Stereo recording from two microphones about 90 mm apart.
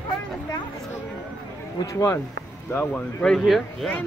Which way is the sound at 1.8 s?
40° left (ahead or behind).